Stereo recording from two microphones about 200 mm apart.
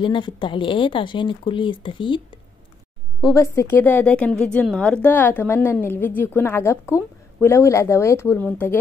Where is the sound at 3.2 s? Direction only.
15° left (ahead or behind).